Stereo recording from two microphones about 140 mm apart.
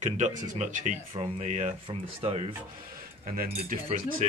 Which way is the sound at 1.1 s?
50° right (ahead or behind).